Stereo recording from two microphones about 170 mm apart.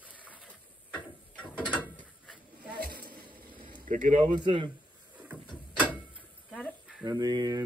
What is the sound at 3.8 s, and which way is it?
Speech, 50° right (ahead or behind).